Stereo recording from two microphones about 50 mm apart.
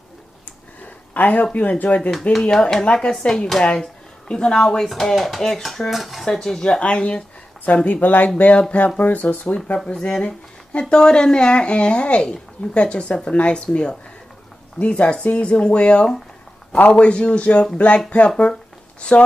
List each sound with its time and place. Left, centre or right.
1.1 s speech: left
2.5 s speech: centre
4.8 s dishes: centre
6.8 s speech: left
7.6 s speech: left
8.5 s speech: left
9.9 s speech: centre
10.2 s speech: left